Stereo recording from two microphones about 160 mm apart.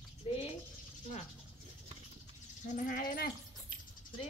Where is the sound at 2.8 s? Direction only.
65° left (ahead or behind).